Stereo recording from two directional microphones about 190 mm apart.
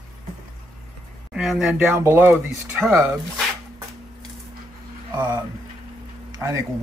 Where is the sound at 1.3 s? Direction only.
Centre (ahead or behind).